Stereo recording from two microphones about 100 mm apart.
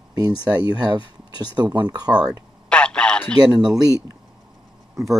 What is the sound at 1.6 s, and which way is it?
Speech, 45° right (ahead or behind).